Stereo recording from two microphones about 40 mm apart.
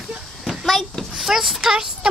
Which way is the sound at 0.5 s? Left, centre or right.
Centre.